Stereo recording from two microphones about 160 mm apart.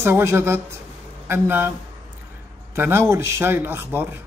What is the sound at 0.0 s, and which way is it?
A man's voice, 15° right (ahead or behind).